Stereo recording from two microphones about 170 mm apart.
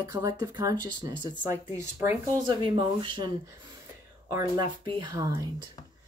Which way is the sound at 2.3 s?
25° right (ahead or behind).